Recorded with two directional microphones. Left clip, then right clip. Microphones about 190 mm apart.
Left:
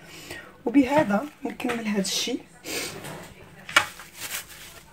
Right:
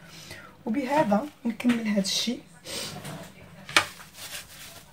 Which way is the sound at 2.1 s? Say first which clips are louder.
Left 1 dB; 50° left (ahead or behind).